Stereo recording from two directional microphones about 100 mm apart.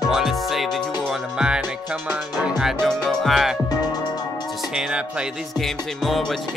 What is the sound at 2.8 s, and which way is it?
Music, 5° left (ahead or behind).